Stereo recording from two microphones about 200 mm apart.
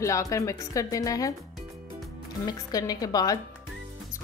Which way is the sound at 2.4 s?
20° left (ahead or behind).